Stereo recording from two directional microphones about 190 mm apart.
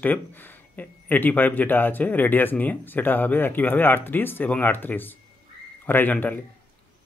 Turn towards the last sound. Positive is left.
turn(degrees=10)  # may be behind; listen again after turning